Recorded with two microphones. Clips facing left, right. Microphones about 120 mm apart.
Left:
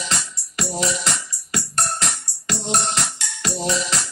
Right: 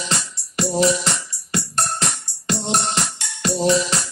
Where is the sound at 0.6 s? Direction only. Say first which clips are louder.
Right 6 dB; 30° right (ahead or behind).